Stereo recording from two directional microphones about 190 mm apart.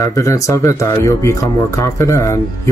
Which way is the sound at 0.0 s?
15° left (ahead or behind).